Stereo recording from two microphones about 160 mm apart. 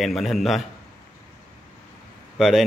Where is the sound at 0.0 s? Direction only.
Centre (ahead or behind).